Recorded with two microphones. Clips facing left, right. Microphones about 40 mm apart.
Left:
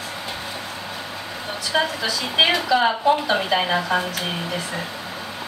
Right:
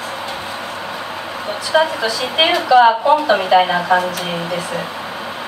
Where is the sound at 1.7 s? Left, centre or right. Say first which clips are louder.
Right 7 dB; centre.